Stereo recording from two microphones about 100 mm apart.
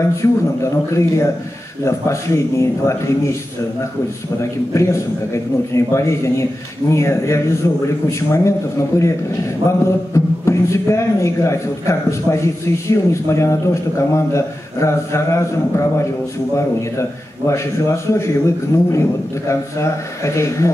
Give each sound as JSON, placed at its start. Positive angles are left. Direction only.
{"t": 0.2, "sound": "a man's voice", "side_deg": 25}
{"t": 4.4, "sound": "a man's voice", "side_deg": 30}
{"t": 17.5, "sound": "a man's voice", "side_deg": 30}